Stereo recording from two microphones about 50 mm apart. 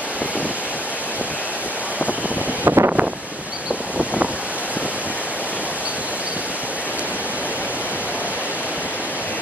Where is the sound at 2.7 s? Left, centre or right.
Right.